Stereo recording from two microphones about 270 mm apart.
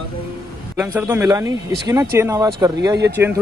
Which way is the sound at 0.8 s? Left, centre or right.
Centre.